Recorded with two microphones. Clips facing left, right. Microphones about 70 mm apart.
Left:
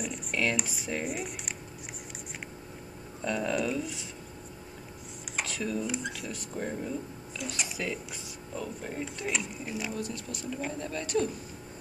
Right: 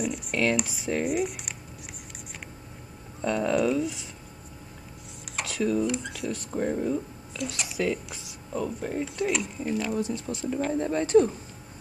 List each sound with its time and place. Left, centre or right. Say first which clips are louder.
0.0 s speech: right 4 dB; centre
3.2 s speech: right 5 dB; centre
5.3 s speech: right 6 dB; centre
9.9 s speech: right 7 dB; right